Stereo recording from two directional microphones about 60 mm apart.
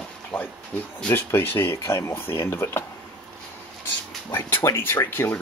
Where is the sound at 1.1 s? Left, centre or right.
Left.